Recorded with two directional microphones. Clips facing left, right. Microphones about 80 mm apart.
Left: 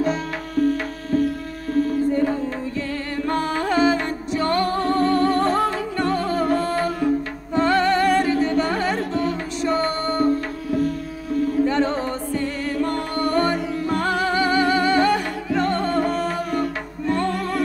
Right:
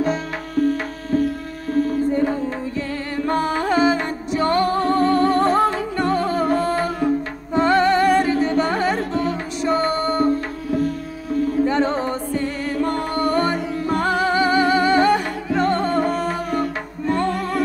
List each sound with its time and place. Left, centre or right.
3.2 s music: centre
11.6 s music: centre